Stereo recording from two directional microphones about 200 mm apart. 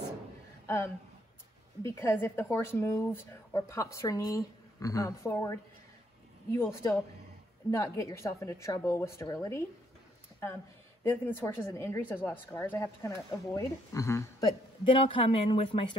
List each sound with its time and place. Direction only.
0.7 s speech: 15° left (ahead or behind)
11.1 s speech: 10° left (ahead or behind)
14.9 s speech: 25° left (ahead or behind)